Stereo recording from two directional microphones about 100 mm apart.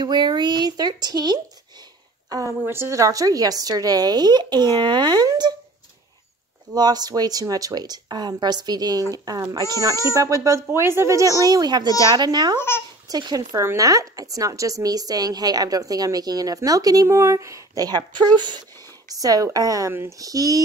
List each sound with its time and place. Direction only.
0.0 s speech: 45° right (ahead or behind)
2.6 s a woman's voice: 25° right (ahead or behind); by 5.5 s 40° right (ahead or behind)
6.7 s a woman's voice: 40° right (ahead or behind)
12.5 s a child's voice: 25° left (ahead or behind)
13.1 s a woman's voice: 40° right (ahead or behind)
19.1 s a woman's voice: 40° right (ahead or behind)
19.9 s speech: 25° right (ahead or behind)
20.2 s a woman's voice: 35° right (ahead or behind)